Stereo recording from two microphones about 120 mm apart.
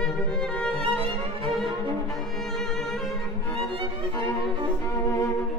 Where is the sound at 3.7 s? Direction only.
45° right (ahead or behind).